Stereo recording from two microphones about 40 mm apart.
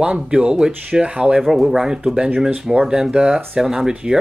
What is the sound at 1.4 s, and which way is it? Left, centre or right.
Speech, centre.